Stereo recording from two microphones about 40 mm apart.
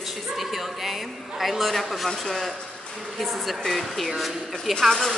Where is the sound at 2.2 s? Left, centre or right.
Centre.